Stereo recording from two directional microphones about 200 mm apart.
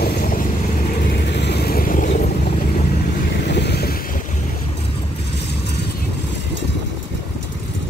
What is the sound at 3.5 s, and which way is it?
Vehicle, 55° left (ahead or behind).